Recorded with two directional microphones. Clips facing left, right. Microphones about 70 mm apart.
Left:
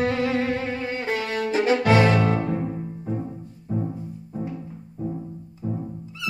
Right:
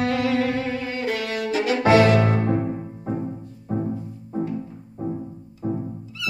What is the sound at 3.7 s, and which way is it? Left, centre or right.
Music, right.